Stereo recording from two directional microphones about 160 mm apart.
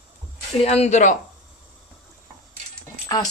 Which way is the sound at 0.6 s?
40° left (ahead or behind).